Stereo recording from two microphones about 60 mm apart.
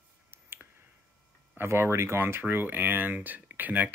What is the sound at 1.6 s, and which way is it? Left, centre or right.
Speech, right.